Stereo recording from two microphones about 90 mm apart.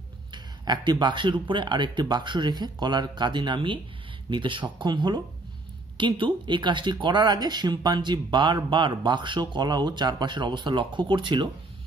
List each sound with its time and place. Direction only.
0.3 s speech: 55° right (ahead or behind)